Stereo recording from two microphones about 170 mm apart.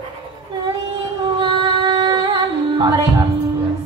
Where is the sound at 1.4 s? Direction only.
25° right (ahead or behind).